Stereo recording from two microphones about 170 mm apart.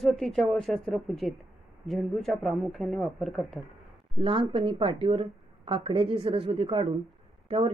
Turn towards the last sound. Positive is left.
turn(degrees=-35)  # may be behind; listen again after turning